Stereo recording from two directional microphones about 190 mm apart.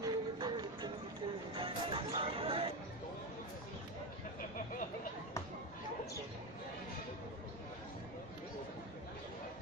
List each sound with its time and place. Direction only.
0.0 s music: 20° right (ahead or behind)